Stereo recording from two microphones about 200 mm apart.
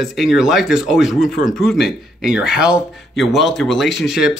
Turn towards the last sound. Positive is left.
turn(degrees=0)  # may be behind; listen again after turning